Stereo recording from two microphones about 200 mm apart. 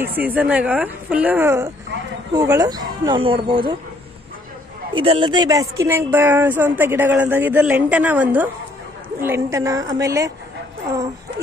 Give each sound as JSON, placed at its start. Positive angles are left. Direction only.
{"t": 0.0, "sound": "speech", "side_deg": -10}
{"t": 4.9, "sound": "speech", "side_deg": -25}